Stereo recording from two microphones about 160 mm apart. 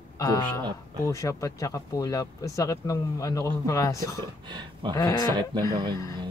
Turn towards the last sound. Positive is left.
turn(degrees=-30)  # may be behind; listen again after turning